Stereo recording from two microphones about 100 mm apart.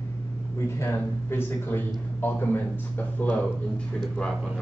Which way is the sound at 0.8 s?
25° left (ahead or behind).